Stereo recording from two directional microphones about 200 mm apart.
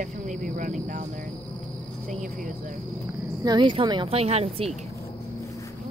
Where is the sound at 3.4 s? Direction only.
25° right (ahead or behind).